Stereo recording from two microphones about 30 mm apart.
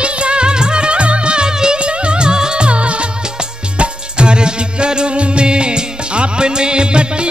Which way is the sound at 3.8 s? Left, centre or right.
Right.